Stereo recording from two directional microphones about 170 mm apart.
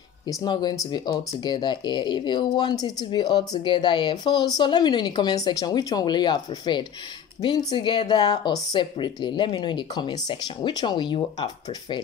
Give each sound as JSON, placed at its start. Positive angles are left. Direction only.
{"t": 0.3, "sound": "speech", "side_deg": 25}